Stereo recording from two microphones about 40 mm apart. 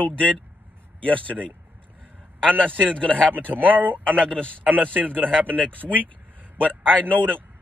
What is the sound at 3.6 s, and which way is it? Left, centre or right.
Speech, right.